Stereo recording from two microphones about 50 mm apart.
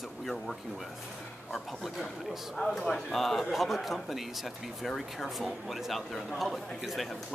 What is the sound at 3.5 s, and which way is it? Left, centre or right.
Speech, centre.